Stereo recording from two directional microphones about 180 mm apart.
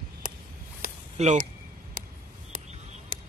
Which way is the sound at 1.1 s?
40° right (ahead or behind).